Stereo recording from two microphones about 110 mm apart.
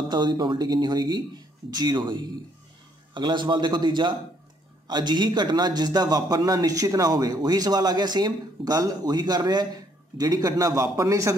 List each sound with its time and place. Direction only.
0.1 s a man's voice: 45° right (ahead or behind)